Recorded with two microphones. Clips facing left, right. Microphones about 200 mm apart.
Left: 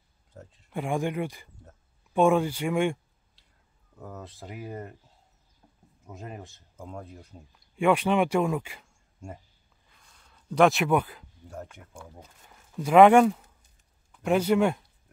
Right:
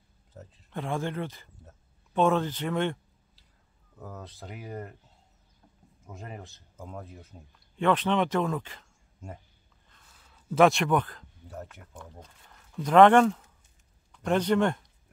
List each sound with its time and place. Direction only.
0.3 s speech: centre (ahead or behind)
0.7 s speech: 10° left (ahead or behind)
4.0 s speech: centre (ahead or behind)
6.0 s speech: centre (ahead or behind)
7.7 s speech: 10° left (ahead or behind)
10.0 s a sound: 5° right (ahead or behind)
11.4 s speech: centre (ahead or behind)